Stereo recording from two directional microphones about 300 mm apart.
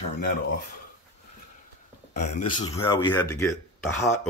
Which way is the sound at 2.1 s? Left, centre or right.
Left.